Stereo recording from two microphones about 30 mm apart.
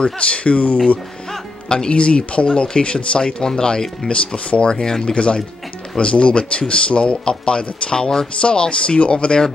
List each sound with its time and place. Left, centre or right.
0.0 s speech: left
1.9 s speech: left
8.4 s speech: left